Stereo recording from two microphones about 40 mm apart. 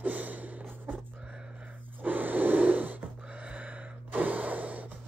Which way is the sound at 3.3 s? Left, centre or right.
Right.